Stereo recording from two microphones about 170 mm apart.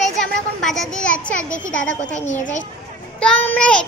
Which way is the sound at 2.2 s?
45° left (ahead or behind).